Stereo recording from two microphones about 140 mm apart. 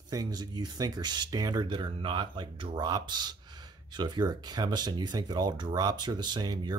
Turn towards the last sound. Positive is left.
turn(degrees=-30)  # may be behind; listen again after turning